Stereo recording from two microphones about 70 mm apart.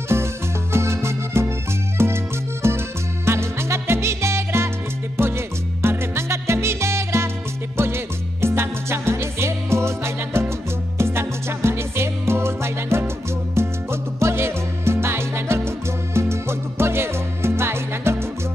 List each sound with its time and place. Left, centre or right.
0.1 s music: right
5.8 s music: right